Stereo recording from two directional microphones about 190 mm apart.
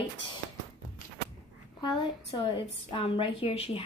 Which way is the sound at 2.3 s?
25° left (ahead or behind).